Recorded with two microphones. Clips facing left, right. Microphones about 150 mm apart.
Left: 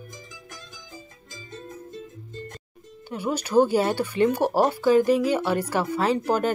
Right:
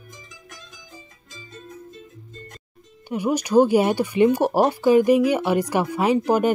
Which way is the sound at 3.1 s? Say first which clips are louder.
Right 4 dB; 15° right (ahead or behind).